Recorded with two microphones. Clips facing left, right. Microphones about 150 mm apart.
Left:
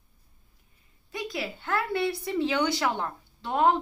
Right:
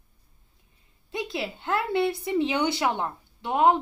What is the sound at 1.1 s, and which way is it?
Speech, 25° right (ahead or behind).